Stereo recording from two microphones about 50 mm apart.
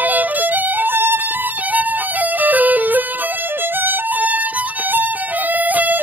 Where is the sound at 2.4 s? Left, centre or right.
Right.